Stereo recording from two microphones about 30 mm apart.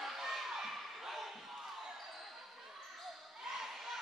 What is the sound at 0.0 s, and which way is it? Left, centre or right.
Basketball bounce, centre.